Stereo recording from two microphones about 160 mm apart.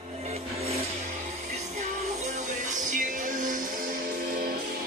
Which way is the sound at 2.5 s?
50° right (ahead or behind).